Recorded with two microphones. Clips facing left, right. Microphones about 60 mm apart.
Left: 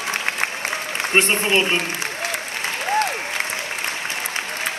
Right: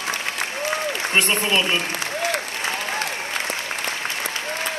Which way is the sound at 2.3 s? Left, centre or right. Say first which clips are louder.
Right 2 dB; right.